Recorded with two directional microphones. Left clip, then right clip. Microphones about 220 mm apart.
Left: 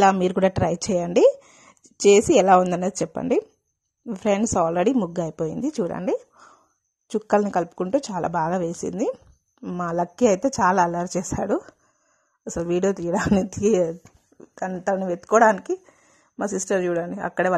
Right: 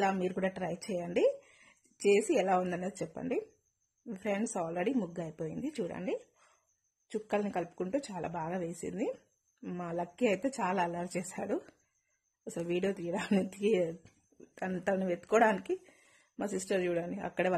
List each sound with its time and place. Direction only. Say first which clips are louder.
0.0 s a woman's voice: left 14 dB; 30° left (ahead or behind)
15.2 s a woman's voice: left 11 dB; 15° left (ahead or behind)